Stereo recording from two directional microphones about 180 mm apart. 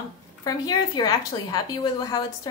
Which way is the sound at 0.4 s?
20° left (ahead or behind).